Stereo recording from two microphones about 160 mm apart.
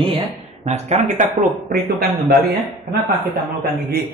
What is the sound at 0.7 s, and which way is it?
Speech, 45° right (ahead or behind).